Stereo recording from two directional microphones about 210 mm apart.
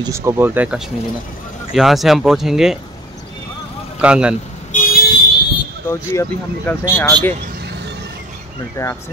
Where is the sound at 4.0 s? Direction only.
5° right (ahead or behind).